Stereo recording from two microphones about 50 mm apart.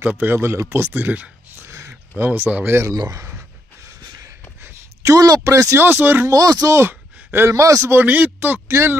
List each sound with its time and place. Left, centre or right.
0.2 s speech: right
0.9 s speech: right
1.7 s a sound: right
2.1 s speech: right
2.7 s speech: right
5.0 s speech: right
5.8 s speech: right
6.2 s speech: right
6.9 s a sound: right
7.4 s speech: right
7.9 s speech: right
8.6 s speech: right